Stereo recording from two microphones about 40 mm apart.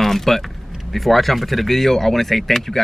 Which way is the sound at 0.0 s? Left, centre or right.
Centre.